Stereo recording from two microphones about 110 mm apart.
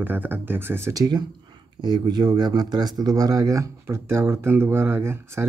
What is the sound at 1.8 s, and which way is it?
Speech, 40° right (ahead or behind).